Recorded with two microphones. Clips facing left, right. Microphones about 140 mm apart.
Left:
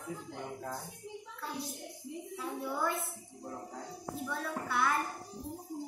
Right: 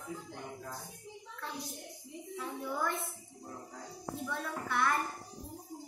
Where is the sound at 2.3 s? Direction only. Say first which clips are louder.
Even; 5° left (ahead or behind).